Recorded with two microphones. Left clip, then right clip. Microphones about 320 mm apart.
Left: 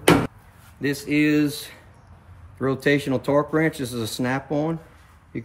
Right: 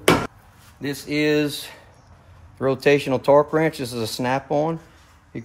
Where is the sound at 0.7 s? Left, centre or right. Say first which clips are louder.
Left 2 dB; centre.